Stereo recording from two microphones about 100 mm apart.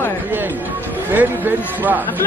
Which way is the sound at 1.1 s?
20° right (ahead or behind).